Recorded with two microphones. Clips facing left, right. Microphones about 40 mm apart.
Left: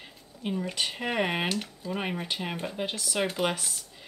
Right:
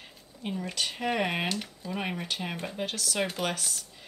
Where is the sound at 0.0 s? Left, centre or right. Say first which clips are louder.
Left 2 dB; centre.